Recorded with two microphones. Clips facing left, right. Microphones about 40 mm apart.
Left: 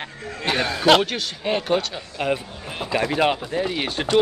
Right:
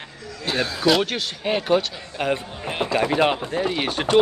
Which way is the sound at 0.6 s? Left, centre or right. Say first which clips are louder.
Right 2 dB; left.